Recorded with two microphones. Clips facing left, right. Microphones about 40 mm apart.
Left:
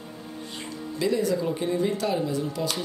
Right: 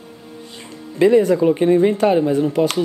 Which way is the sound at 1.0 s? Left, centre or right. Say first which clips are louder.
Right 12 dB; right.